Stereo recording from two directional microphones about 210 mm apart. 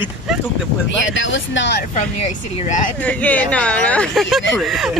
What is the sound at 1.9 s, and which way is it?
Speech, 35° left (ahead or behind).